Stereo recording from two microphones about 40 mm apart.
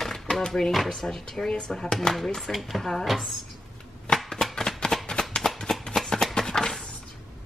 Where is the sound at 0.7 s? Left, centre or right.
Centre.